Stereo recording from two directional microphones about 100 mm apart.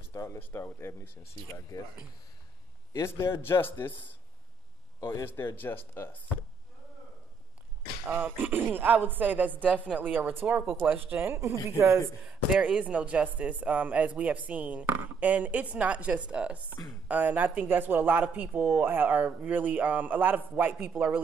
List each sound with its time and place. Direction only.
0.1 s speech: 30° left (ahead or behind)
2.9 s speech: 25° left (ahead or behind)
5.1 s speech: 25° left (ahead or behind)
8.1 s speech: 20° right (ahead or behind)
12.3 s speech: 10° right (ahead or behind)